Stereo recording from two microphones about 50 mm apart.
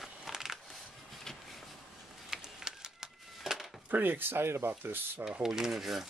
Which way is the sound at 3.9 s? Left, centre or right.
Right.